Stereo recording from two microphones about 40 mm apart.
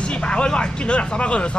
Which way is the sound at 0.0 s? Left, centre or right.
Left.